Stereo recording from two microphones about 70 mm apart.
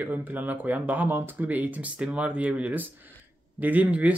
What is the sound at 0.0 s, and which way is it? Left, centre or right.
Speech, right.